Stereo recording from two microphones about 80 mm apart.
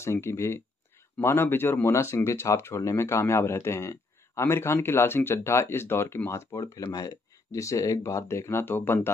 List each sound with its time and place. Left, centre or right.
0.0 s speech: left
1.9 s speech: left
6.9 s speech: left